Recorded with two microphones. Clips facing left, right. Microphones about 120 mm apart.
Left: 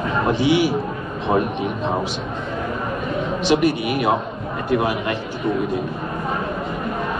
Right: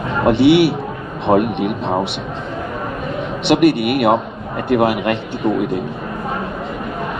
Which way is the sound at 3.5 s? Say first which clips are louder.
Right 6 dB; 65° right (ahead or behind).